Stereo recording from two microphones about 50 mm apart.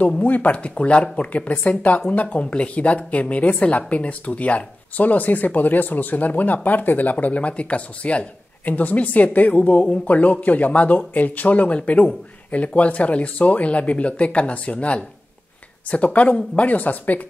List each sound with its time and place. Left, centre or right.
0.0 s speech: left